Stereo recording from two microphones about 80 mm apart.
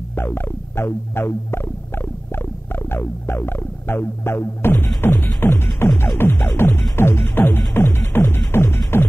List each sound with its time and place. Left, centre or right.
0.1 s music: left